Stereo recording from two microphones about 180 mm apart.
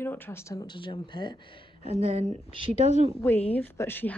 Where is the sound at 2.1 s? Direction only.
40° right (ahead or behind).